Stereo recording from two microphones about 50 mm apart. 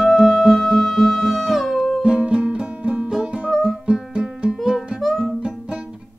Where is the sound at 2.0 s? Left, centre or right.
Centre.